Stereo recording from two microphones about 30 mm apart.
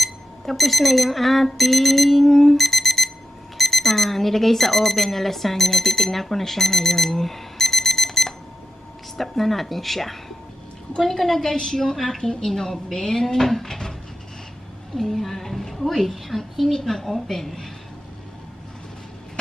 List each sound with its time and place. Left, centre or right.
0.0 s speech: centre
2.2 s alarm: centre
3.5 s a woman's voice: centre
11.5 s a woman's voice: left
12.2 s a woman's voice: centre
15.0 s a woman's voice: centre